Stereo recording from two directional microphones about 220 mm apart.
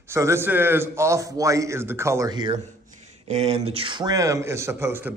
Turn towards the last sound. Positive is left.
turn(degrees=-10)  # may be behind; listen again after turning